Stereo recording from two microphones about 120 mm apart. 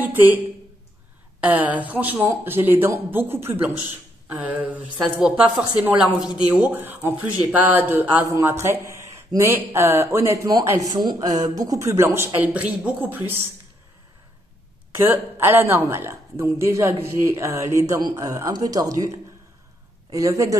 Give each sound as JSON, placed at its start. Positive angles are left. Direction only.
{"t": 0.0, "sound": "a woman's voice", "side_deg": -15}
{"t": 1.5, "sound": "speech", "side_deg": -15}
{"t": 12.4, "sound": "speech", "side_deg": -10}
{"t": 14.9, "sound": "speech", "side_deg": -20}